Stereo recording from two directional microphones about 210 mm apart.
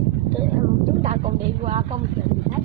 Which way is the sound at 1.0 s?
30° right (ahead or behind).